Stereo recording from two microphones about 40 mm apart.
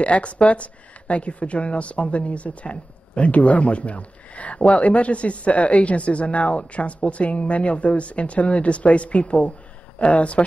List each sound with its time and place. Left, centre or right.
0.0 s speech: left